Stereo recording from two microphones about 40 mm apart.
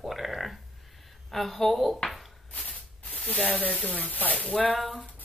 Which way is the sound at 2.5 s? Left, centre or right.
Left.